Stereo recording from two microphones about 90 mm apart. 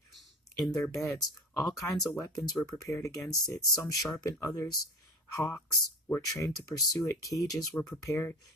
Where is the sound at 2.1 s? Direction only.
40° left (ahead or behind).